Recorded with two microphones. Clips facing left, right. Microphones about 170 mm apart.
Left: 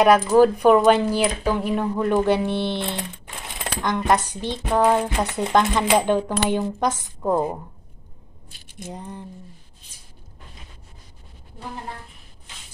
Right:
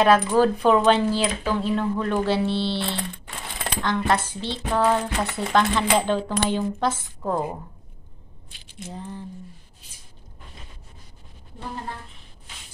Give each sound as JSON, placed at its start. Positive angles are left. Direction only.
{"t": 0.0, "sound": "speech", "side_deg": 10}
{"t": 8.5, "sound": "a sound", "side_deg": 45}
{"t": 8.8, "sound": "speech", "side_deg": 15}